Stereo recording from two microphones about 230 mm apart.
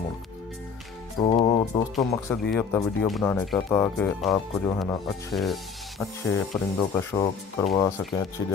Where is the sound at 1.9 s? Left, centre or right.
Centre.